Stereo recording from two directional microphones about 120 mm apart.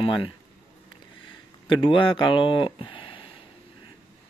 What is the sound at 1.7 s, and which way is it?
Speech, 45° left (ahead or behind).